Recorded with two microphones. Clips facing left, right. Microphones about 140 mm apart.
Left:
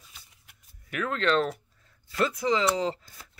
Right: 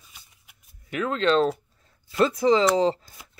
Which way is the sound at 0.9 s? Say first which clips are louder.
Right 4 dB; 25° right (ahead or behind).